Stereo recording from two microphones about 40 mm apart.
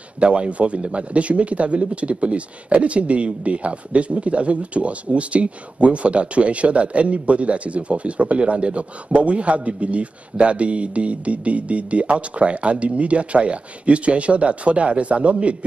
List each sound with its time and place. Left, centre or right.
0.2 s a man's voice: right